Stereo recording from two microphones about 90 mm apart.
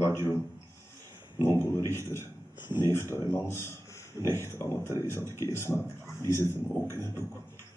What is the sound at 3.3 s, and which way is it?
Speech, 25° left (ahead or behind).